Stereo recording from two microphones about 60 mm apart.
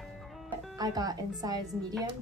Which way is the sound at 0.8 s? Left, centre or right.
Right.